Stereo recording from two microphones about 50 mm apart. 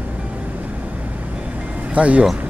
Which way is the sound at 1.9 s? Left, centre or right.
Right.